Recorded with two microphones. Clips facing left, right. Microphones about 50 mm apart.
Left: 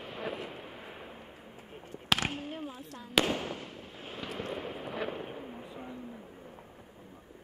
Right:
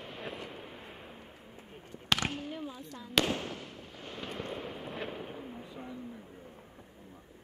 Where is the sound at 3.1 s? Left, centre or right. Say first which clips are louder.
Left 1 dB; centre.